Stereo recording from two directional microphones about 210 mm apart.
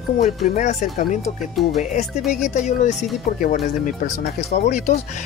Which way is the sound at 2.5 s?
35° left (ahead or behind).